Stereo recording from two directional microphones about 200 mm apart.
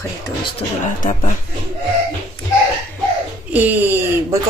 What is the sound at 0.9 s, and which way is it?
Speech, 40° left (ahead or behind).